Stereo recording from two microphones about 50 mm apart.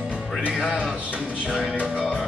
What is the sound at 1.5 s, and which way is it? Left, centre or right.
Music, right.